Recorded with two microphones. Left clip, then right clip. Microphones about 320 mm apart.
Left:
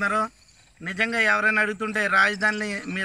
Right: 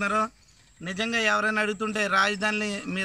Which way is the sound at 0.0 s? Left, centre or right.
Centre.